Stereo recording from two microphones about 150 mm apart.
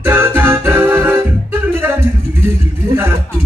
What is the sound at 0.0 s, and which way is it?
Music, 15° right (ahead or behind).